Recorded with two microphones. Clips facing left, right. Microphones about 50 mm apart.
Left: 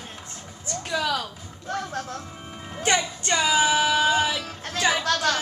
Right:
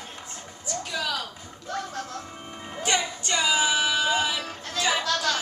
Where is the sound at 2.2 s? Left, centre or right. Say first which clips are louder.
Even; centre.